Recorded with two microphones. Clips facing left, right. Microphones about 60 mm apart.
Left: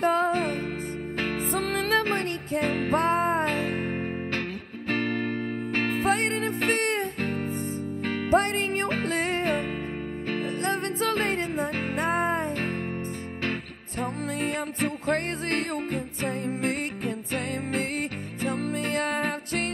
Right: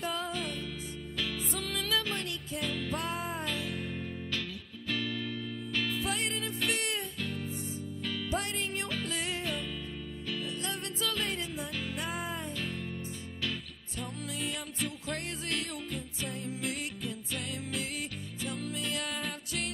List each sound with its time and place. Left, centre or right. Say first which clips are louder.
0.0 s music: left 12 dB; left
14.4 s music: left 9 dB; left